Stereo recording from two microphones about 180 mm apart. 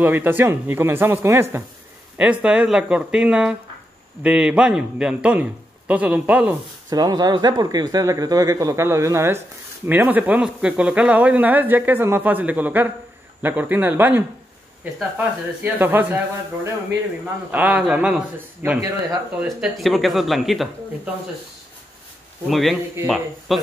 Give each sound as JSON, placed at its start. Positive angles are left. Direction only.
{"t": 0.0, "sound": "a man's voice", "side_deg": -10}
{"t": 6.9, "sound": "speech", "side_deg": -20}
{"t": 17.5, "sound": "speech", "side_deg": -5}
{"t": 19.6, "sound": "a man's voice", "side_deg": 0}
{"t": 22.5, "sound": "a man's voice", "side_deg": 0}